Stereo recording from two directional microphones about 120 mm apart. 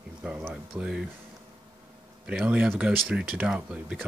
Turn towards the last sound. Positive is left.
turn(degrees=-10)  # may be behind; listen again after turning